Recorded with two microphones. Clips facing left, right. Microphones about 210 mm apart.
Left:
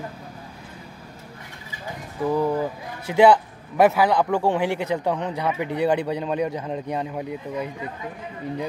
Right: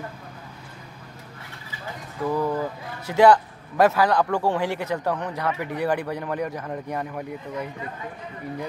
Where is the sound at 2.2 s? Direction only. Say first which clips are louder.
Left 2 dB; 15° left (ahead or behind).